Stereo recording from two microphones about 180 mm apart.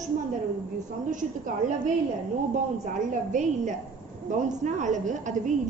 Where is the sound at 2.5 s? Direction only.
45° right (ahead or behind).